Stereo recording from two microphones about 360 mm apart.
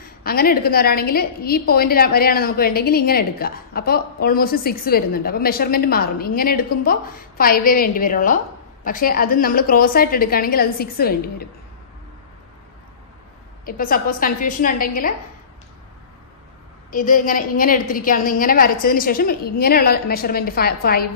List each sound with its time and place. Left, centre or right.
0.0 s a woman's voice: left
13.7 s a woman's voice: left
16.9 s a woman's voice: left